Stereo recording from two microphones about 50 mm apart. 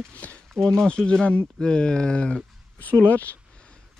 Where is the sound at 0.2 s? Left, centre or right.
Left.